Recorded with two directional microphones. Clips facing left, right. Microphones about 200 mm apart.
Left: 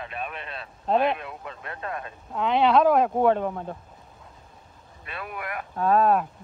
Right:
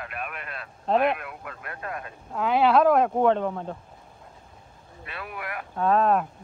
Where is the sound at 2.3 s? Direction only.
5° right (ahead or behind).